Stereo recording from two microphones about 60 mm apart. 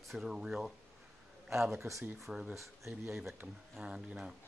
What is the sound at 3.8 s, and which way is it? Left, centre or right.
Speech, centre.